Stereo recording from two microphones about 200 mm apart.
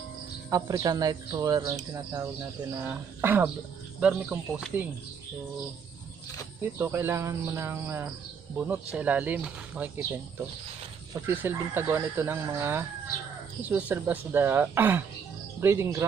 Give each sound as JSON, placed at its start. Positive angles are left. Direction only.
{"t": 0.5, "sound": "speech", "side_deg": -20}
{"t": 2.8, "sound": "speech", "side_deg": -10}
{"t": 6.6, "sound": "speech", "side_deg": -10}